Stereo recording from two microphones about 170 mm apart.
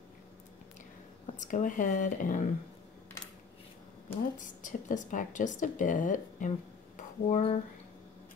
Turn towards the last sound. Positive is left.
turn(degrees=45)  # may be behind; listen again after turning